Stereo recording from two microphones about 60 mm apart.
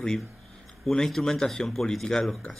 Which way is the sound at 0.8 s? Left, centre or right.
Centre.